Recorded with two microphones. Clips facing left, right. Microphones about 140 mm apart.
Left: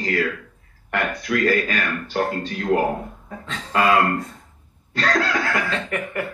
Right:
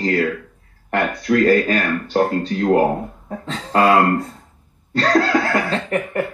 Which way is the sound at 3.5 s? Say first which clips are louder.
Right 4 dB; 35° right (ahead or behind).